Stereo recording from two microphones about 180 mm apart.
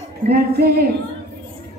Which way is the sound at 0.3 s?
60° right (ahead or behind).